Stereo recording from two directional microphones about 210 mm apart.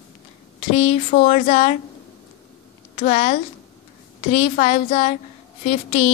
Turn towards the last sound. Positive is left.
turn(degrees=35)  # may be behind; listen again after turning